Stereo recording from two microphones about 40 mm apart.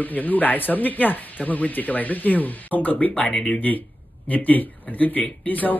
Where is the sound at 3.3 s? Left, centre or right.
Left.